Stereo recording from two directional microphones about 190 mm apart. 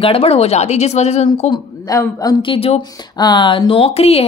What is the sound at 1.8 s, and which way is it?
Speech, 20° left (ahead or behind).